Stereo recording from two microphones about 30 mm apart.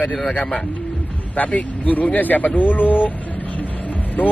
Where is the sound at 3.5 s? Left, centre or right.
Left.